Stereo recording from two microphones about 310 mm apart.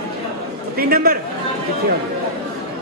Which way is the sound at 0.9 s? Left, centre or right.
Right.